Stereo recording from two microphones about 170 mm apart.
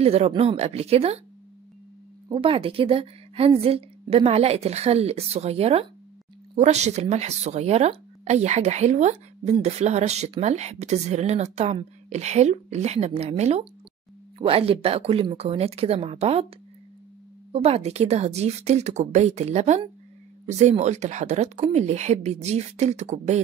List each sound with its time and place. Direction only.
0.0 s speech: 35° right (ahead or behind)
2.3 s speech: 35° right (ahead or behind)
17.5 s speech: 35° right (ahead or behind)